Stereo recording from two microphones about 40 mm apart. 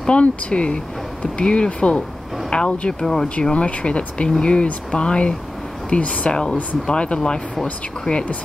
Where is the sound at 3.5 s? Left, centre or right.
Left.